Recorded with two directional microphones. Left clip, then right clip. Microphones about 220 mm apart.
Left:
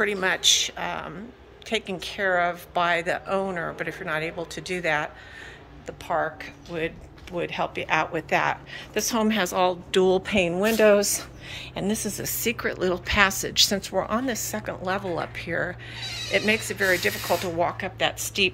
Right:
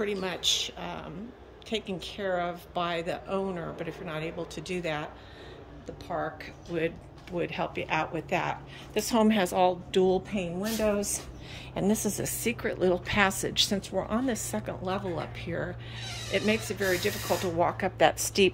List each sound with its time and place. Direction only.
0.0 s speech: centre (ahead or behind)
10.5 s a woman's voice: 35° left (ahead or behind)
11.0 s a woman's voice: centre (ahead or behind); by 18.5 s 20° right (ahead or behind)